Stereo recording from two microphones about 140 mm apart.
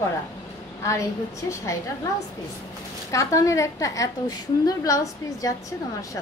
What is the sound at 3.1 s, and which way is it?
A woman's voice, 25° left (ahead or behind).